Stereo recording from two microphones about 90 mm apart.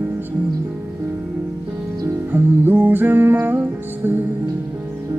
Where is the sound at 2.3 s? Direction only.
20° right (ahead or behind).